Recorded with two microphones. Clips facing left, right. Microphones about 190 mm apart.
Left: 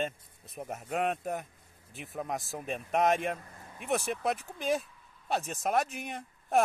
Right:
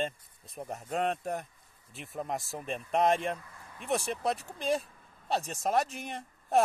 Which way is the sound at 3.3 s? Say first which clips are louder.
Even; 40° left (ahead or behind).